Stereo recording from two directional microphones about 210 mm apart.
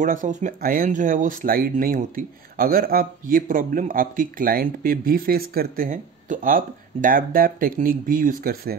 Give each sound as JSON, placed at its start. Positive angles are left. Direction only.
{"t": 0.0, "sound": "speech", "side_deg": -40}